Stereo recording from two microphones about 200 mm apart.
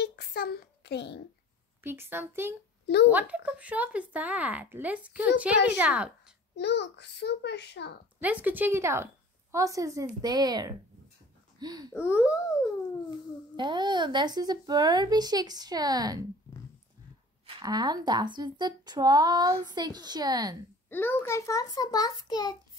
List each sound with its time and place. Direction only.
0.0 s a sound: 55° left (ahead or behind)
1.8 s speech: 10° right (ahead or behind)
6.5 s a child's voice: 60° left (ahead or behind)
8.2 s speech: 10° right (ahead or behind)
11.9 s a child's voice: 10° left (ahead or behind)
13.6 s speech: 20° right (ahead or behind)
17.6 s speech: 20° right (ahead or behind)
20.9 s a child's voice: 10° left (ahead or behind)